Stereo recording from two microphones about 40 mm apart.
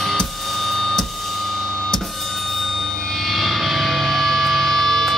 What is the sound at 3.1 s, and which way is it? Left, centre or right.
Music, centre.